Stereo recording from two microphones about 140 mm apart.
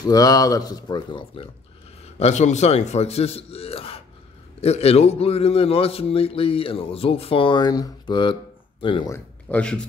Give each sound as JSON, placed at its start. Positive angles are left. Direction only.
{"t": 0.0, "sound": "speech", "side_deg": 25}
{"t": 2.1, "sound": "a man's voice", "side_deg": 50}
{"t": 9.1, "sound": "speech", "side_deg": 10}